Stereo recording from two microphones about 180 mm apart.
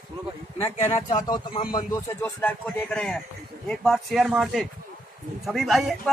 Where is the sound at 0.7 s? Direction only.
40° left (ahead or behind).